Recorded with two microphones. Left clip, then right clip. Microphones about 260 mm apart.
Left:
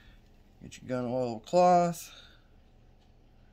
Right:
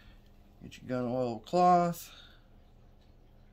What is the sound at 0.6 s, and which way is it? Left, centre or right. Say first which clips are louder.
Speech: left 1 dB; centre.